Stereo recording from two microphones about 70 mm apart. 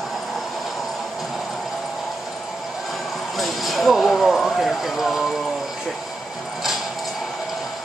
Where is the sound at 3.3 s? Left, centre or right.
Centre.